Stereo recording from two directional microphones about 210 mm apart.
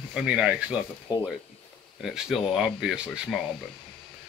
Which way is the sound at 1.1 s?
20° left (ahead or behind).